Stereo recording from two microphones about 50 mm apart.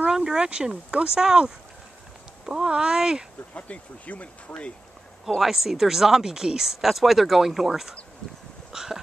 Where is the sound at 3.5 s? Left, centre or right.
Left.